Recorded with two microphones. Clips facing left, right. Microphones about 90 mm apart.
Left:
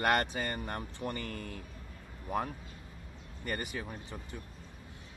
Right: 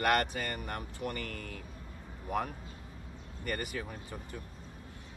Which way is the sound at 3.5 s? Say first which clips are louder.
Right 1 dB; 20° left (ahead or behind).